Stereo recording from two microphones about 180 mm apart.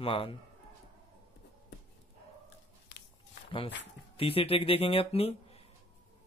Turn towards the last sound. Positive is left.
turn(degrees=35)  # may be behind; listen again after turning